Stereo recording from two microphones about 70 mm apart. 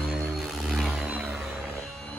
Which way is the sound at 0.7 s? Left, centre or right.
Centre.